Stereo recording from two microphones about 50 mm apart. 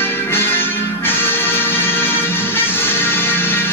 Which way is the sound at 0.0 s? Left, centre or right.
Left.